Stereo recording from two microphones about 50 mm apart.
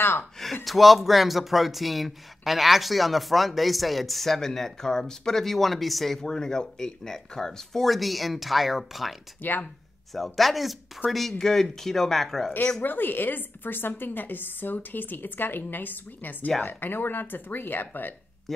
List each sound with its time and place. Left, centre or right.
0.2 s speech: centre
9.4 s a woman's voice: left
10.1 s speech: centre
12.8 s a woman's voice: left